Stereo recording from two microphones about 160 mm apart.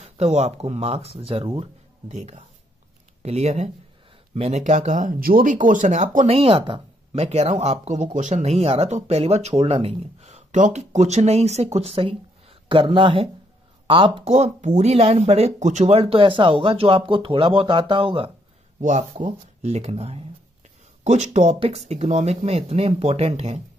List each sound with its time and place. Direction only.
0.0 s speech: 45° right (ahead or behind)
2.1 s speech: 45° right (ahead or behind)
18.8 s speech: 50° right (ahead or behind)